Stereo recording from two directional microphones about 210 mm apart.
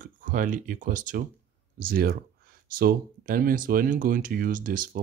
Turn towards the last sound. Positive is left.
turn(degrees=-40)  # may be behind; listen again after turning